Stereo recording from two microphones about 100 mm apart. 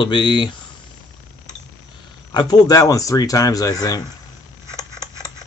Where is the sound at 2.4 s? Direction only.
40° left (ahead or behind).